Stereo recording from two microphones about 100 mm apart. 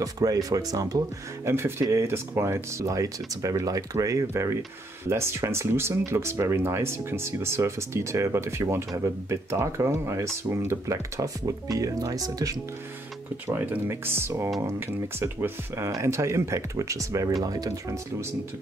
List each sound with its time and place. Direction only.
0.0 s speech: 35° right (ahead or behind)
1.5 s speech: 25° right (ahead or behind)
13.5 s speech: 20° right (ahead or behind); by 17.9 s 40° right (ahead or behind)